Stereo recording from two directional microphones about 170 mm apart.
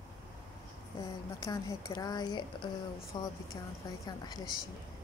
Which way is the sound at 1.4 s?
25° left (ahead or behind).